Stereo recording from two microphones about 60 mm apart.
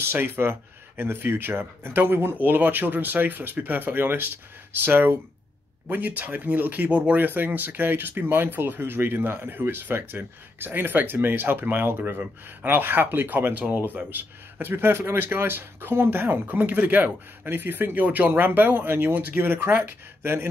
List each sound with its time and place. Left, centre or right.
0.0 s speech: right